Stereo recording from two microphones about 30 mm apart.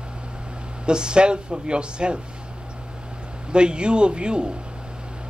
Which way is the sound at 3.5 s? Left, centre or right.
Right.